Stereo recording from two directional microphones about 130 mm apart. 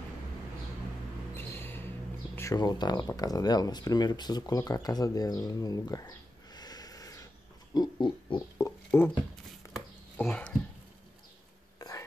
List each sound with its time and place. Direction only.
1.3 s a sound: 15° left (ahead or behind)
2.3 s speech: 25° left (ahead or behind)
7.7 s pig: 35° left (ahead or behind)
8.5 s rodents: 20° left (ahead or behind)
10.2 s speech: 10° left (ahead or behind)